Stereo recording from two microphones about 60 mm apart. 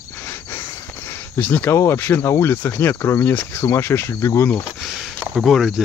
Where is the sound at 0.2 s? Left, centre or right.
Left.